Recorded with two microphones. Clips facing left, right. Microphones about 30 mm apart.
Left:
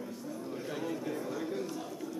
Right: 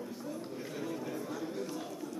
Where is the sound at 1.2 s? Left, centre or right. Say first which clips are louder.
Left 3 dB; centre.